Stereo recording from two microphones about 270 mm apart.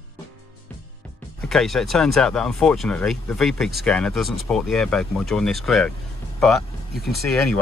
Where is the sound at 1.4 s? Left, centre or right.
Centre.